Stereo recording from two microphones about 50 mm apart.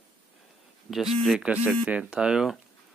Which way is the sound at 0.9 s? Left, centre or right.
Centre.